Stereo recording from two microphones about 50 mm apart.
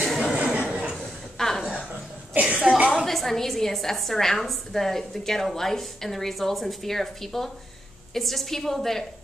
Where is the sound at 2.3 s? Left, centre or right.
Right.